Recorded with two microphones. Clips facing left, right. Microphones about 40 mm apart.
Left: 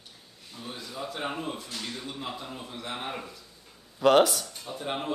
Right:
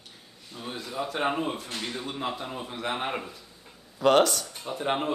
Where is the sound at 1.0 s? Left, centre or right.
Right.